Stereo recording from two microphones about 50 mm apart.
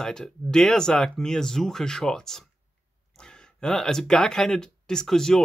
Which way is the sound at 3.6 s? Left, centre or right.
Centre.